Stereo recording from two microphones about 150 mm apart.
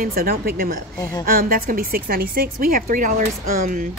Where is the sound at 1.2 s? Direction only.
70° right (ahead or behind).